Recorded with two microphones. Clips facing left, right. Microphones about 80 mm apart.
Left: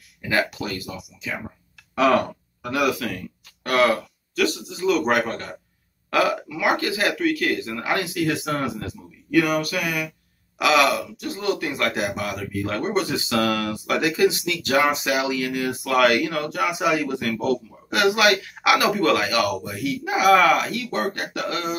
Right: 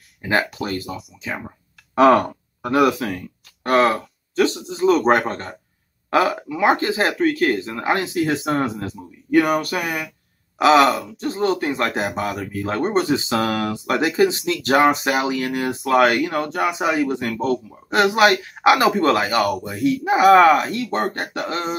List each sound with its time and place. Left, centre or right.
0.2 s speech: right